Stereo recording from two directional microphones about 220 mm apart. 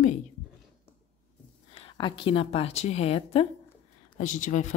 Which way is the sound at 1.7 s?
25° left (ahead or behind).